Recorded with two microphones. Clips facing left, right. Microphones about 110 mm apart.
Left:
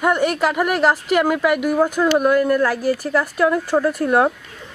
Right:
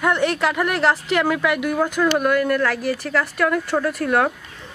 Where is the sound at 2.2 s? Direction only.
35° left (ahead or behind).